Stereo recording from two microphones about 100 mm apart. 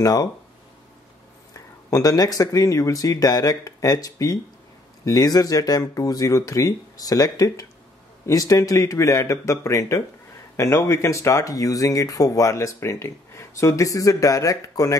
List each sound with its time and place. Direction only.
0.0 s speech: 40° left (ahead or behind)
1.9 s speech: 35° left (ahead or behind)